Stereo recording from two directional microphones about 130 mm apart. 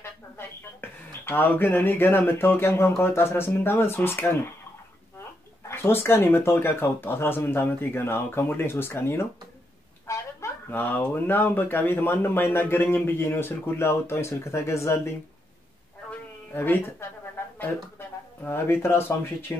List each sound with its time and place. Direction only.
0.0 s speech: 15° left (ahead or behind)
5.7 s speech: 20° left (ahead or behind)
16.1 s a sound: 15° left (ahead or behind)
17.6 s speech: 15° left (ahead or behind)